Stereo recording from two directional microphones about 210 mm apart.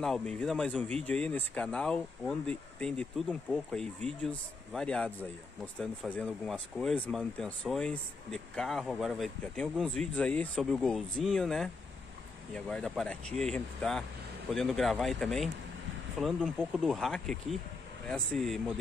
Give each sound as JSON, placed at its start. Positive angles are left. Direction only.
{"t": 0.0, "sound": "speech", "side_deg": 0}